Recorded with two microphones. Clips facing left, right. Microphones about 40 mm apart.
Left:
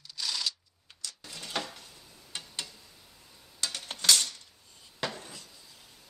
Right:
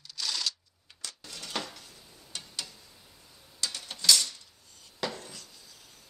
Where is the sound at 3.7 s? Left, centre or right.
Left.